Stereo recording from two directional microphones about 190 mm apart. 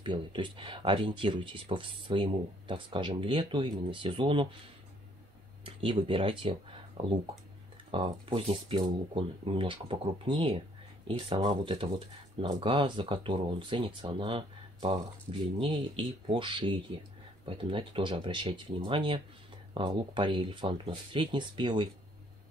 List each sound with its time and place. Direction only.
0.0 s speech: 25° right (ahead or behind)
5.6 s speech: 25° right (ahead or behind)